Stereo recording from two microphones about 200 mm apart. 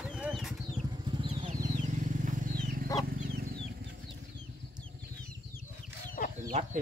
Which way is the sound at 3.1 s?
50° right (ahead or behind).